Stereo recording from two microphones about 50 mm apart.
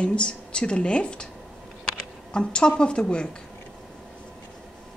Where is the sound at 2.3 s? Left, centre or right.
Centre.